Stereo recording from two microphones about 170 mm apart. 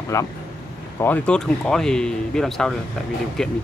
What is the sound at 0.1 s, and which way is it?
Speech, 20° left (ahead or behind).